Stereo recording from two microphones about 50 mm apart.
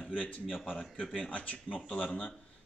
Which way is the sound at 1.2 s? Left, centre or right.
Left.